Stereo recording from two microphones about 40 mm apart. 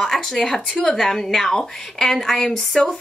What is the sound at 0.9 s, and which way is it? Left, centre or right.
A woman's voice, centre.